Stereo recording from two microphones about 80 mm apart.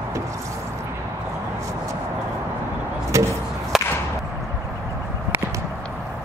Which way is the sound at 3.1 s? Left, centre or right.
Right.